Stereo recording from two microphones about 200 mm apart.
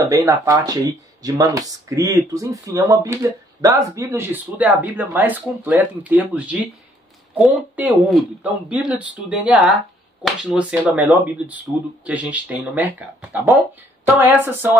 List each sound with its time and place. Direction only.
0.0 s speech: 15° right (ahead or behind)